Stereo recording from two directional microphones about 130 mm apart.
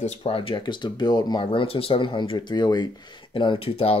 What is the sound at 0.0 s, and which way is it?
Speech, 50° left (ahead or behind).